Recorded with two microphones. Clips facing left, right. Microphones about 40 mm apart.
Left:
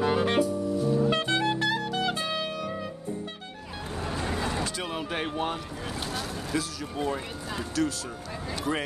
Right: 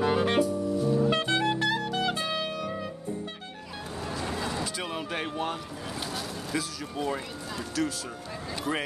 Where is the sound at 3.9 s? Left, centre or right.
Left.